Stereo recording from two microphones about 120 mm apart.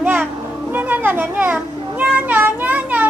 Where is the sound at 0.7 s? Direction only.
15° right (ahead or behind).